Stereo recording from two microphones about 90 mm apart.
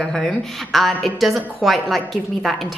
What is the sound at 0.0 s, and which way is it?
Speech, 5° left (ahead or behind).